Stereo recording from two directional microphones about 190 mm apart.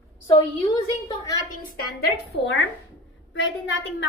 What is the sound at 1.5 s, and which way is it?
A woman's voice, 55° left (ahead or behind).